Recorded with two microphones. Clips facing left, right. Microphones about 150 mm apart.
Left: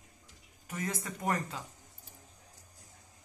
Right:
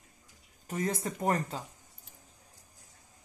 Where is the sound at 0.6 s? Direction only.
35° right (ahead or behind).